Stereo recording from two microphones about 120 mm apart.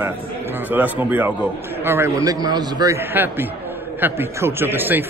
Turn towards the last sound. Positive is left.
turn(degrees=-15)  # may be behind; listen again after turning